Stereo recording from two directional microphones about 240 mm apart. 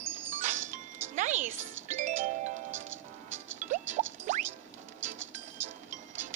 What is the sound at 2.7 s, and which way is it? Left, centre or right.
Music, right.